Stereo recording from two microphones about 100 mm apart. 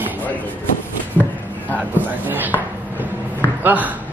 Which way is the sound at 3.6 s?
15° right (ahead or behind).